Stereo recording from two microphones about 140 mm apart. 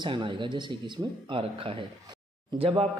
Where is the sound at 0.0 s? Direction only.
35° right (ahead or behind).